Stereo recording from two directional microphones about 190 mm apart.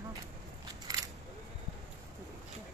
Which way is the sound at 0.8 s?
20° right (ahead or behind).